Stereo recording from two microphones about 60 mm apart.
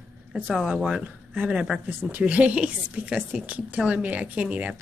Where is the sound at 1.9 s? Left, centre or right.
Right.